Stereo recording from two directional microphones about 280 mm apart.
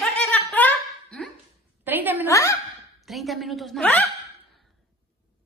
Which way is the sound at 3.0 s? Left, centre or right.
Centre.